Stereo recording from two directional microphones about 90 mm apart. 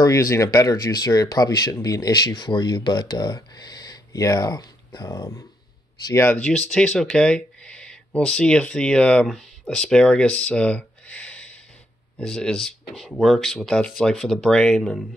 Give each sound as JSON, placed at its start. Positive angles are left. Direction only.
{"t": 0.0, "sound": "speech", "side_deg": 35}
{"t": 6.3, "sound": "speech", "side_deg": 10}